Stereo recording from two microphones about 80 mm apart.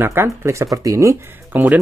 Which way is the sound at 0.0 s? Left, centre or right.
Right.